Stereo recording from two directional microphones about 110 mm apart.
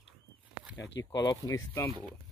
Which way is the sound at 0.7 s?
35° left (ahead or behind).